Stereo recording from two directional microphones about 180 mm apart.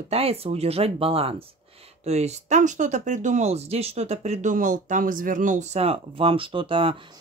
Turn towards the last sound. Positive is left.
turn(degrees=-30)  # may be behind; listen again after turning